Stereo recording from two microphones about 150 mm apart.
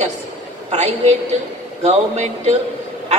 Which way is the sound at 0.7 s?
45° right (ahead or behind).